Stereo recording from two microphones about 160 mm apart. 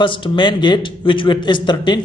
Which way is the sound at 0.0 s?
30° left (ahead or behind).